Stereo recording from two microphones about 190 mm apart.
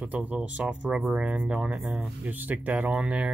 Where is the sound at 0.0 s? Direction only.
5° right (ahead or behind).